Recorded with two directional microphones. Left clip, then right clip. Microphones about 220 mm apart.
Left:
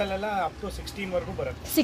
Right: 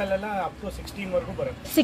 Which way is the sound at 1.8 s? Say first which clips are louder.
Right 3 dB; 5° right (ahead or behind).